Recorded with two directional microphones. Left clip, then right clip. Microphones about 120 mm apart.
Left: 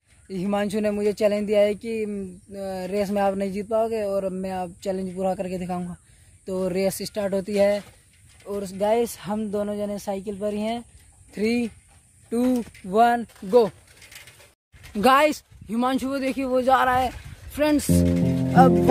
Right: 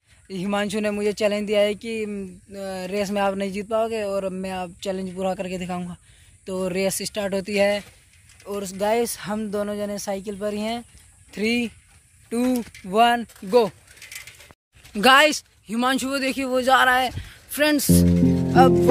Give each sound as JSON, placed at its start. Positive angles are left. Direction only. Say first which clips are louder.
{"t": 0.3, "sound": "speech", "louder": "even", "side_deg": 0}
{"t": 11.3, "sound": "speech", "louder": "right 1 dB", "side_deg": 0}
{"t": 15.0, "sound": "speech", "louder": "right 3 dB", "side_deg": 5}
{"t": 18.6, "sound": "music", "louder": "right 1 dB", "side_deg": 15}